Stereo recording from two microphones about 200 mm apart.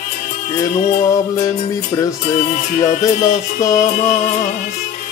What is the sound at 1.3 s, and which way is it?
Music, 15° left (ahead or behind).